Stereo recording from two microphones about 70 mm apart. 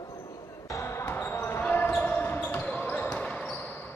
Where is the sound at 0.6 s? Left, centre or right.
Left.